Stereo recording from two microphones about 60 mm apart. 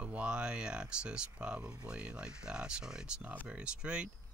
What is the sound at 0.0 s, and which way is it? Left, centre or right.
Speech, centre.